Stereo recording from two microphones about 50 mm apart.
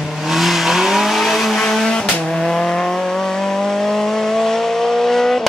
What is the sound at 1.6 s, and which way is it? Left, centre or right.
Vehicle, centre.